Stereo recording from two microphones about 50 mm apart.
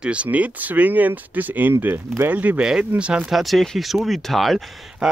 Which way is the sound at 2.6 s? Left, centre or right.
Centre.